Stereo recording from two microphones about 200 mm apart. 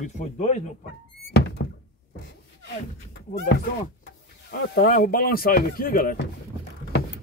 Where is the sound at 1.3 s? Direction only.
55° left (ahead or behind).